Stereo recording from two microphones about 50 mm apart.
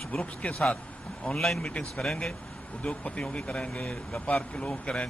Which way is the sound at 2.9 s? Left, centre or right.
Left.